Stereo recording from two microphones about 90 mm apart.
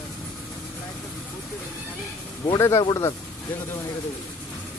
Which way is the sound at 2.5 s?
30° left (ahead or behind).